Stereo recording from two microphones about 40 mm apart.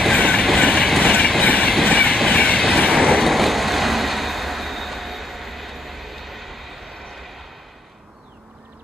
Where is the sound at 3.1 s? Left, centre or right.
Centre.